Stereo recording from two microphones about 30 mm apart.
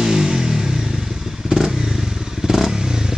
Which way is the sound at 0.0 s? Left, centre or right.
Centre.